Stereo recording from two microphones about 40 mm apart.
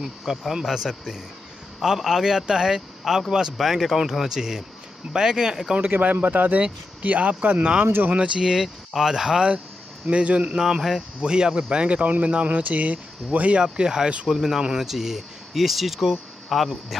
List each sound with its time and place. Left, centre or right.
0.0 s speech: centre
5.8 s speech: right
7.8 s speech: right
8.1 s speech: right
8.6 s speech: centre
10.0 s speech: right
10.5 s speech: centre
11.2 s speech: right
13.6 s speech: right; by 17.0 s centre